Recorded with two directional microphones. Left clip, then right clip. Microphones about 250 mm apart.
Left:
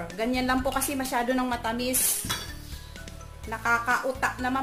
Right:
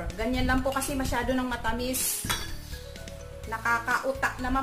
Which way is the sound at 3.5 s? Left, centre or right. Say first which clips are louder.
Left 2 dB; left.